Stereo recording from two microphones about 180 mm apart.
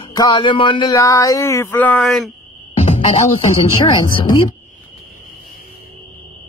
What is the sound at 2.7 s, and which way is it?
Speech, 35° left (ahead or behind).